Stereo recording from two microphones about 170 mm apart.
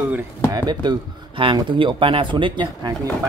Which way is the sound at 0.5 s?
25° right (ahead or behind).